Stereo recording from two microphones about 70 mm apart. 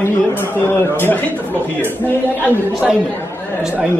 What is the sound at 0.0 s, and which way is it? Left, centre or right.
Speech, left.